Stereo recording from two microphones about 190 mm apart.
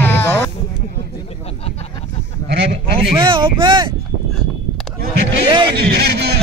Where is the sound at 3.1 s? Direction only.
25° right (ahead or behind).